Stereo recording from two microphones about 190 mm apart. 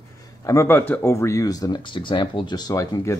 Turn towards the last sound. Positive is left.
turn(degrees=20)  # may be behind; listen again after turning